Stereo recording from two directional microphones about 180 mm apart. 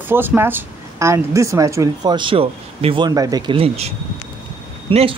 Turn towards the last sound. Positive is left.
turn(degrees=-35)  # may be behind; listen again after turning